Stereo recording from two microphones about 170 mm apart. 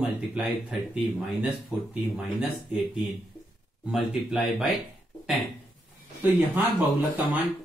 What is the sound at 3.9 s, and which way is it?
Speech, 5° right (ahead or behind).